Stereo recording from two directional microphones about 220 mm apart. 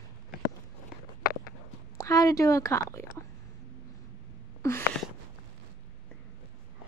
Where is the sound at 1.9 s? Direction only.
15° left (ahead or behind).